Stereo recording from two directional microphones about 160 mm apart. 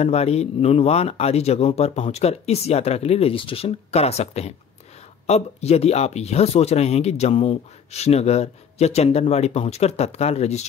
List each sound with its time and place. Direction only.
0.0 s speech: 40° left (ahead or behind)